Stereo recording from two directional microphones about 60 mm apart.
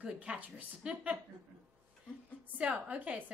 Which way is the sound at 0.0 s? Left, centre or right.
Right.